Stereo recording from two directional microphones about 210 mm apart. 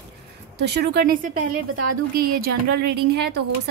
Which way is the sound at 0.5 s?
50° right (ahead or behind).